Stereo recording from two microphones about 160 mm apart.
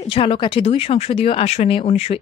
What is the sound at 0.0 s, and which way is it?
Speech, 35° left (ahead or behind).